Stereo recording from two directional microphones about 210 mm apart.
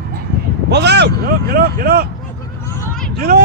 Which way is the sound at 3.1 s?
45° right (ahead or behind).